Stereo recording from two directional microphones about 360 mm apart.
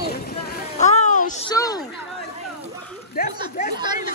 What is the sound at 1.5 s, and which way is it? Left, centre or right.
Speech, centre.